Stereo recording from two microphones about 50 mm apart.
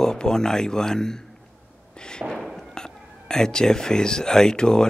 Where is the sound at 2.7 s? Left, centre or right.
Centre.